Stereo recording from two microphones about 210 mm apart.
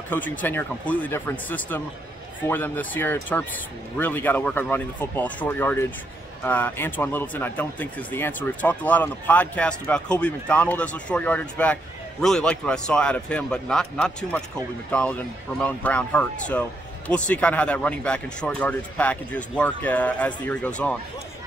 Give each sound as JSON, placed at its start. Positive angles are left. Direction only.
{"t": 0.1, "sound": "speech", "side_deg": 10}